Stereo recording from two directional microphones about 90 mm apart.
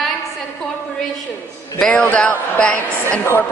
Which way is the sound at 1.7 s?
15° left (ahead or behind).